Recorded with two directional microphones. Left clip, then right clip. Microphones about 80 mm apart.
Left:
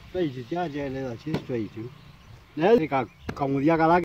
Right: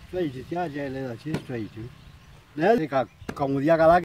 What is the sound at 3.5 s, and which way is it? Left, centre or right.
Speech, right.